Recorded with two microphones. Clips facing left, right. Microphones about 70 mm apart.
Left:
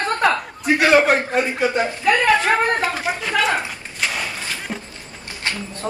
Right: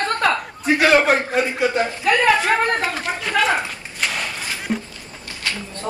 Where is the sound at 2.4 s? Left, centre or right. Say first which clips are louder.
Left 1 dB; centre.